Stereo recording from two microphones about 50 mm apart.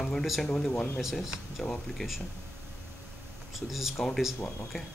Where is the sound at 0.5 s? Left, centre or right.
Centre.